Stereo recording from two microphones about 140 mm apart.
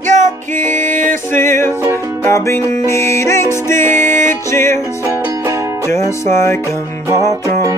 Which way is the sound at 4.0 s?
65° right (ahead or behind).